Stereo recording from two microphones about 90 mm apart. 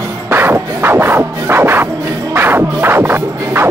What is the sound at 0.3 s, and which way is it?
Music, 25° right (ahead or behind).